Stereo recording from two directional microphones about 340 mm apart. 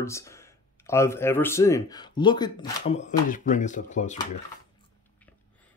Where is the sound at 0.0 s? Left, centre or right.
Centre.